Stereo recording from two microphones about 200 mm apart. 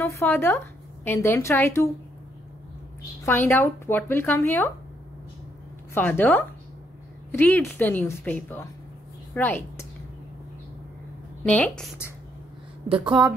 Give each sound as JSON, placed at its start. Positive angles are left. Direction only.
{"t": 0.0, "sound": "speech", "side_deg": 10}
{"t": 3.3, "sound": "speech", "side_deg": 10}
{"t": 5.9, "sound": "a woman's voice", "side_deg": 10}
{"t": 11.4, "sound": "a woman's voice", "side_deg": 5}
{"t": 12.8, "sound": "a woman's voice", "side_deg": -25}
{"t": 13.1, "sound": "a woman's voice", "side_deg": -5}